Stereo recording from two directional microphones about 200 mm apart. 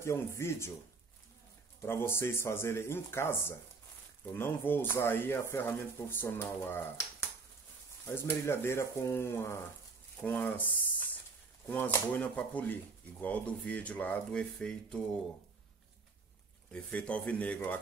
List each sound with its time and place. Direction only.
0.0 s speech: 15° left (ahead or behind)
1.8 s speech: 10° left (ahead or behind)
11.6 s speech: 10° left (ahead or behind)
16.7 s speech: 5° left (ahead or behind)